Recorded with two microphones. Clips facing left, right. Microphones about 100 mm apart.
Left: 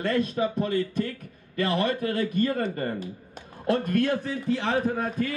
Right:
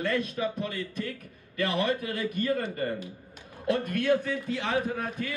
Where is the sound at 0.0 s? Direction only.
35° left (ahead or behind).